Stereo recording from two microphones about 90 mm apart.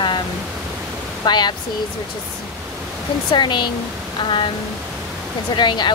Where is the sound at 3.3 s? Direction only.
60° left (ahead or behind).